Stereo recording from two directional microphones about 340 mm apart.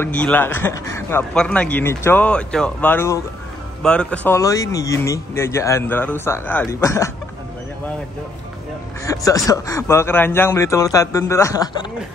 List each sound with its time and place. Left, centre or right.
0.0 s a man's voice: centre
9.0 s speech: centre